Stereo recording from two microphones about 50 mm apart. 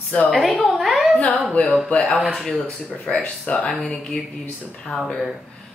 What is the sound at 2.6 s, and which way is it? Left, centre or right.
Speech, left.